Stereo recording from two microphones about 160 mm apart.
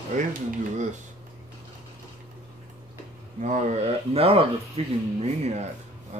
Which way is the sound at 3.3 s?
50° right (ahead or behind).